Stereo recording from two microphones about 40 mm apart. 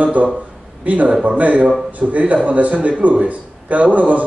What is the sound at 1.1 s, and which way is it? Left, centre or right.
Speech, right.